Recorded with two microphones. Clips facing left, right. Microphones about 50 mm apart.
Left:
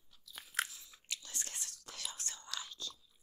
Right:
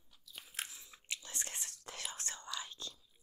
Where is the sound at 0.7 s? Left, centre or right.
Right.